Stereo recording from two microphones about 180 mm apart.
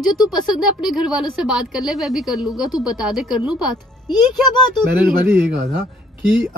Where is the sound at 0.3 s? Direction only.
5° right (ahead or behind).